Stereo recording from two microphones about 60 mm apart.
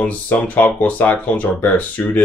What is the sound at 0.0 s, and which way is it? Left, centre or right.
Speech, left.